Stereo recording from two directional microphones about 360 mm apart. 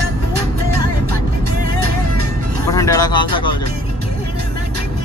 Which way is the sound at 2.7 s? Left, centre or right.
Centre.